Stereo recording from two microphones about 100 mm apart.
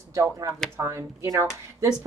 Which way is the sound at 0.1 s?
35° right (ahead or behind).